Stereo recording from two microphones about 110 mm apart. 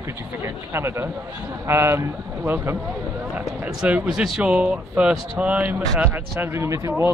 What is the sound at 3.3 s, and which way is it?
Speech, 10° right (ahead or behind).